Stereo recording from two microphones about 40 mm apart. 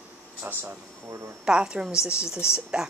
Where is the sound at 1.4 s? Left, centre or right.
Right.